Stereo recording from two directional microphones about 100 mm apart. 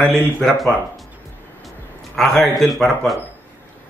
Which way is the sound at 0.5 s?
Centre (ahead or behind).